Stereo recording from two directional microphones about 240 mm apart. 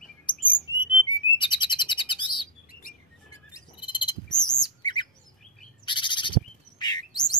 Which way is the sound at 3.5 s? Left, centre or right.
Centre.